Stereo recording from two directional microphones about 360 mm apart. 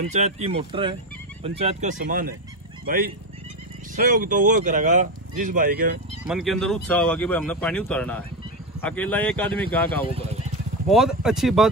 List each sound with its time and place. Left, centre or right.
0.1 s speech: centre
6.2 s speech: centre